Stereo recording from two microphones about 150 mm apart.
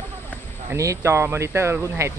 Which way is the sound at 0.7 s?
20° right (ahead or behind).